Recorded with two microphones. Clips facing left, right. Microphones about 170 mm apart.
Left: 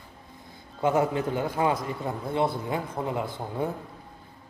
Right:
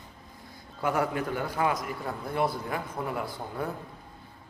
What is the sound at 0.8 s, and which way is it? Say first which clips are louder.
A man's voice: left 4 dB; 25° left (ahead or behind).